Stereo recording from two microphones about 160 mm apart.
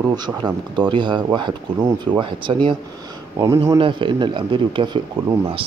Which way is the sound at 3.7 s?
30° right (ahead or behind).